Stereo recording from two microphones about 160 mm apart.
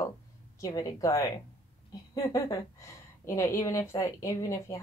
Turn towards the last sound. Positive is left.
turn(degrees=20)  # may be behind; listen again after turning